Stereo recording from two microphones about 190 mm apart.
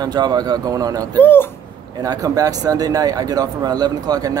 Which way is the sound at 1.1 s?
10° left (ahead or behind).